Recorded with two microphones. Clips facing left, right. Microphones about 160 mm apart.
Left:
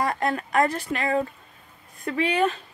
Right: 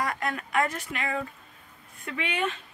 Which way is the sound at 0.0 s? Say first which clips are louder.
Left 5 dB; 35° left (ahead or behind).